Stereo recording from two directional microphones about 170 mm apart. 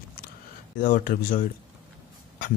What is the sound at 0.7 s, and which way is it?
Speech, 55° left (ahead or behind).